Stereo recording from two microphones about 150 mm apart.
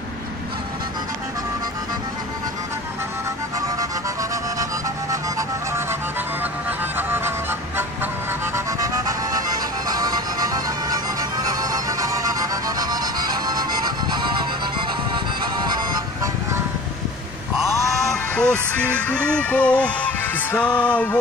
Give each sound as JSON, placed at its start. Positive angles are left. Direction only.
{"t": 6.4, "sound": "music", "side_deg": -15}
{"t": 8.5, "sound": "music", "side_deg": -20}
{"t": 11.6, "sound": "music", "side_deg": -25}
{"t": 18.3, "sound": "music", "side_deg": 10}